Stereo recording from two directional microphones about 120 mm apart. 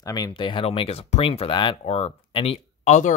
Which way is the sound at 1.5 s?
45° left (ahead or behind).